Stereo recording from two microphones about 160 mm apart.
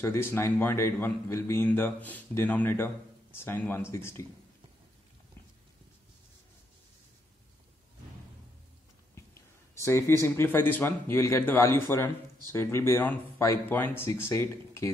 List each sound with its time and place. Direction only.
0.0 s a man's voice: 15° left (ahead or behind)
9.1 s a sound: 15° left (ahead or behind)
10.2 s a man's voice: 15° left (ahead or behind)